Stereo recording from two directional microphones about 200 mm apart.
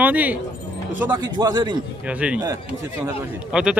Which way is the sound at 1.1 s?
20° right (ahead or behind).